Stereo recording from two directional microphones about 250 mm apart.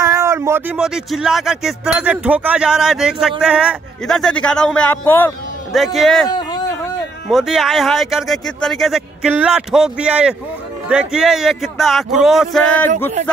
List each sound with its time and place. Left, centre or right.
0.0 s speech: centre
6.2 s a sound: centre
7.2 s speech: centre